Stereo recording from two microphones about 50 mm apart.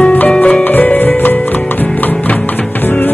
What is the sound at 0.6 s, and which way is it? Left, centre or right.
Music, left.